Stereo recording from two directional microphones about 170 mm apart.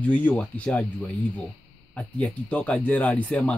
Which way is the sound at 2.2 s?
10° left (ahead or behind).